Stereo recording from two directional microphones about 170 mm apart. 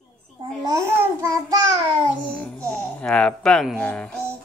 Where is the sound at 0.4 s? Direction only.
20° right (ahead or behind).